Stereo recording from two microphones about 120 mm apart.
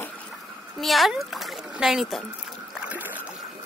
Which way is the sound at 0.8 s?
Centre (ahead or behind).